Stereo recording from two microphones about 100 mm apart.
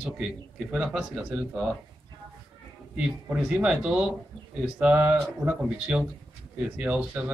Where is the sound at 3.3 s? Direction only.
10° right (ahead or behind).